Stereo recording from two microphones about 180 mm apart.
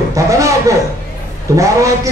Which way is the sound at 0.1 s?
15° right (ahead or behind).